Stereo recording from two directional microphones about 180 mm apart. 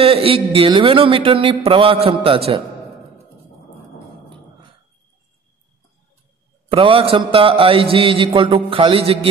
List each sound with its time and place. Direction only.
0.0 s speech: 30° right (ahead or behind)
6.7 s speech: 30° right (ahead or behind)